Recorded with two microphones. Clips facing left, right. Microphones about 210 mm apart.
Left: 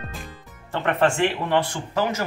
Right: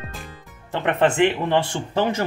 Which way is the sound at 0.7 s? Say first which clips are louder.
Right 2 dB; 20° right (ahead or behind).